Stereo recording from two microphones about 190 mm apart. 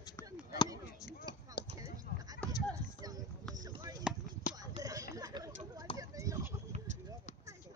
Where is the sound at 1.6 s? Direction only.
55° left (ahead or behind).